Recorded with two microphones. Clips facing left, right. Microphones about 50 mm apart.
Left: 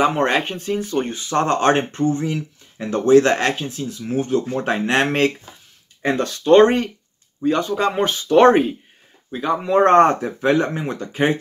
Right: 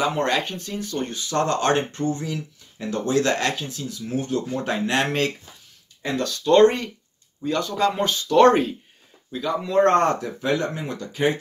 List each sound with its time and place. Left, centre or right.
0.0 s speech: left